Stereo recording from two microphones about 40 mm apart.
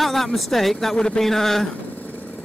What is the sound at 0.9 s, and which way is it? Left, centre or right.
Speech, centre.